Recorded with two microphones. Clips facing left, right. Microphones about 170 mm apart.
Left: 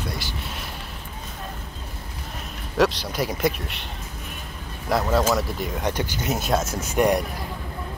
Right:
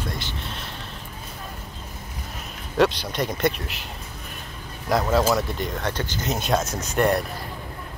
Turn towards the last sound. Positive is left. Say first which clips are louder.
# left 1 dB
turn(degrees=15)  # may be behind; listen again after turning